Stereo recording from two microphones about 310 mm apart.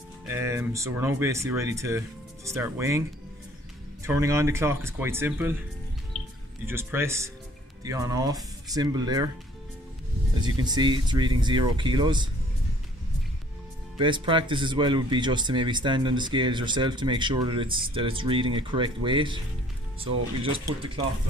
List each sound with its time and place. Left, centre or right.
0.3 s speech: centre
4.0 s speech: centre
6.6 s speech: centre
10.4 s speech: centre
13.9 s speech: centre